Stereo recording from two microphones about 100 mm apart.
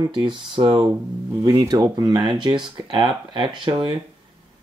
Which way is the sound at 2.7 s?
55° right (ahead or behind).